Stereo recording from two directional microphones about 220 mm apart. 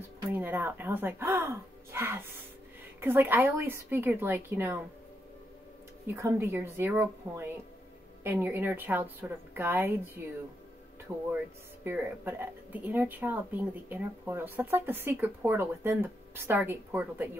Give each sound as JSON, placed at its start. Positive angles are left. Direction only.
{"t": 0.3, "sound": "speech", "side_deg": -10}
{"t": 6.1, "sound": "speech", "side_deg": -10}
{"t": 11.1, "sound": "speech", "side_deg": -10}